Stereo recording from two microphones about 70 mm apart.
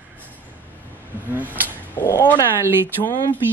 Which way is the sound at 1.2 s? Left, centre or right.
Right.